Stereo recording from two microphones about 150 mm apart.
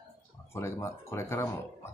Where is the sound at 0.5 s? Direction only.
20° left (ahead or behind).